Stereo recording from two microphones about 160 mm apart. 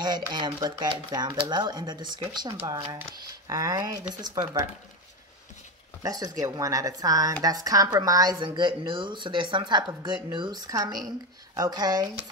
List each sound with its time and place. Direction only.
0.0 s speech: 25° right (ahead or behind)
6.0 s speech: 25° right (ahead or behind)